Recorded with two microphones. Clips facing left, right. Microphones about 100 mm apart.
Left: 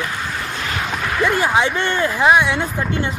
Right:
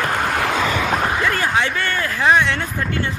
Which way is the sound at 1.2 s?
15° left (ahead or behind).